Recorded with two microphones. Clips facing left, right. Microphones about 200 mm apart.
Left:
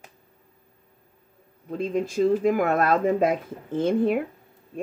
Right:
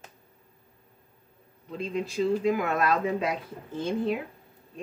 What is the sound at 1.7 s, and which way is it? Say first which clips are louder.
Speech: left 5 dB; 50° left (ahead or behind).